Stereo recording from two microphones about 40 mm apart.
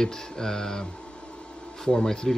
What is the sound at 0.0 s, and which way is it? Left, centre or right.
Speech, centre.